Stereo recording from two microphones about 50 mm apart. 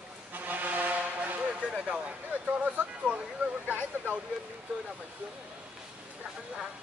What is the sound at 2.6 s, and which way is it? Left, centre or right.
Speech, right.